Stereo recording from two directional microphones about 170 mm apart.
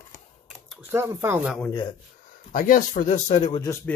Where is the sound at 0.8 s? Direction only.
15° right (ahead or behind).